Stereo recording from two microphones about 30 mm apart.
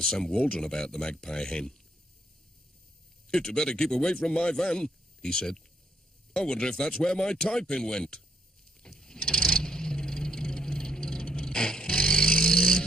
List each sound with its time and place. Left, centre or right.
0.0 s speech: left
3.3 s speech: left
8.9 s vehicle: left